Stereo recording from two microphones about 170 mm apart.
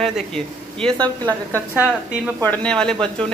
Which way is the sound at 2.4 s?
10° left (ahead or behind).